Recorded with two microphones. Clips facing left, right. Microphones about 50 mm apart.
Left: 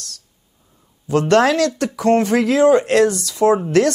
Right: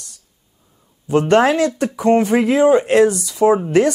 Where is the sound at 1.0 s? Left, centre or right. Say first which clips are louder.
Right 1 dB; centre.